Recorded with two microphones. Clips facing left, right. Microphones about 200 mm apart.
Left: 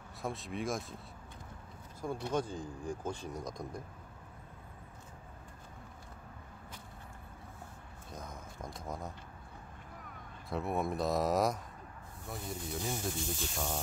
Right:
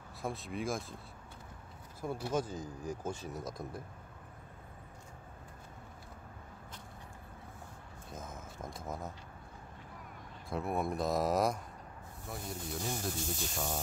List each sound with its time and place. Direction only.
0.2 s speech: centre (ahead or behind)
2.6 s speech: 40° right (ahead or behind)
3.3 s speech: 5° right (ahead or behind)
8.1 s a sound: 5° right (ahead or behind)
10.5 s speech: centre (ahead or behind)